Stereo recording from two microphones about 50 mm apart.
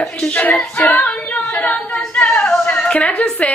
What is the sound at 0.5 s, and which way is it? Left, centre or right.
Singing, left.